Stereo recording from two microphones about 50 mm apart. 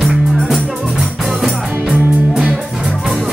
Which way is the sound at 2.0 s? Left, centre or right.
Right.